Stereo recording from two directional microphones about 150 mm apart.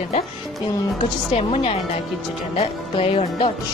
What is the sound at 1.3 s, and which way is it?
Speech, 40° left (ahead or behind).